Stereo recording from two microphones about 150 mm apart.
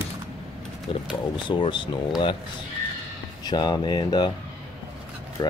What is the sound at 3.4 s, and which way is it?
Speech, 30° left (ahead or behind).